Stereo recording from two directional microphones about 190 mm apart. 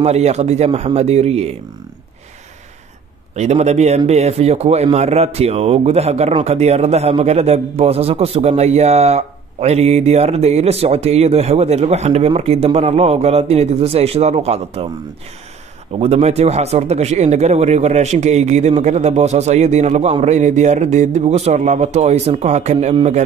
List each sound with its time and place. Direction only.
0.0 s a man's voice: 35° right (ahead or behind)
3.3 s a man's voice: 35° right (ahead or behind)
16.0 s a man's voice: 35° right (ahead or behind)